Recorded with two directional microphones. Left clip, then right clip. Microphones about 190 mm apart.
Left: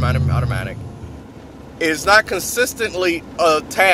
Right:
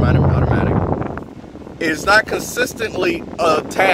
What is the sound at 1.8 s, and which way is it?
Speech, 5° left (ahead or behind).